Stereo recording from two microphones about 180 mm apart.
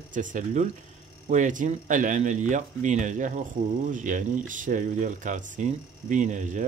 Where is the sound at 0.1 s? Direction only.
45° right (ahead or behind).